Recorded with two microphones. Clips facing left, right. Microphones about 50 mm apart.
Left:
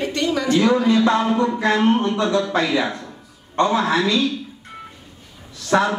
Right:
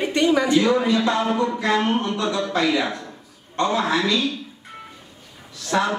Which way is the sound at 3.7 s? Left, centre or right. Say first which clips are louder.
Left 2 dB; centre.